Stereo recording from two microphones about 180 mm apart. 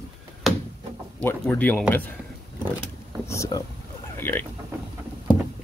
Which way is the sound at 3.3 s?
20° left (ahead or behind).